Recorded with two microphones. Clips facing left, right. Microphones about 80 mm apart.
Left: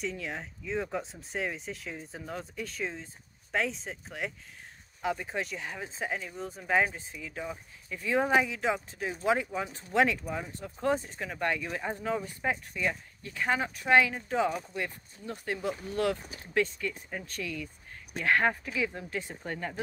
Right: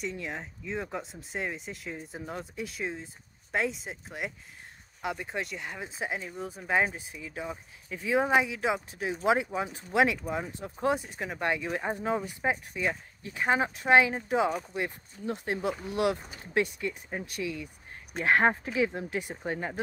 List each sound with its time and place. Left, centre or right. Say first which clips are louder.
0.2 s speech: right 1 dB; centre; by 19.8 s right